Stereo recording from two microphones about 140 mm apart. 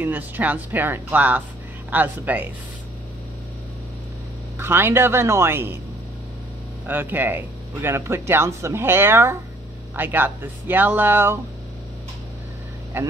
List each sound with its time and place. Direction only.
0.0 s speech: 10° right (ahead or behind)
4.6 s speech: 15° right (ahead or behind)
6.9 s speech: 15° right (ahead or behind)
12.9 s speech: 15° right (ahead or behind)